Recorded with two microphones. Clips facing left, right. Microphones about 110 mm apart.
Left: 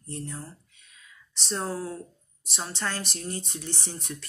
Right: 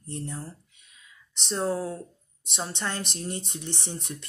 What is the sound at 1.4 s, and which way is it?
Speech, 25° right (ahead or behind).